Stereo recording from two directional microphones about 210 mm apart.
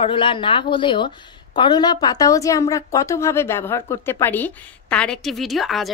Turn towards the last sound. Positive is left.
turn(degrees=0)  # may be behind; listen again after turning